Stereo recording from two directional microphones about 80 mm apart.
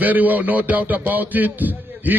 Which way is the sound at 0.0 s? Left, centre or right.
Right.